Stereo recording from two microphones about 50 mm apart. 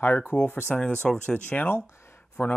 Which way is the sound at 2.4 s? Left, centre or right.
Left.